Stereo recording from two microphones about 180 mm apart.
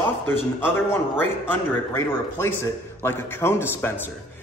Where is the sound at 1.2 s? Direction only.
10° left (ahead or behind).